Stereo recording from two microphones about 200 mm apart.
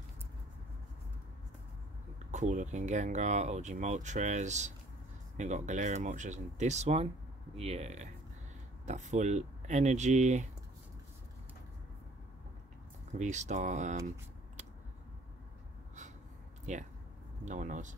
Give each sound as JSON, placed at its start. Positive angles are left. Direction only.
{"t": 2.1, "sound": "speech", "side_deg": -35}
{"t": 13.1, "sound": "speech", "side_deg": -35}
{"t": 16.7, "sound": "speech", "side_deg": -35}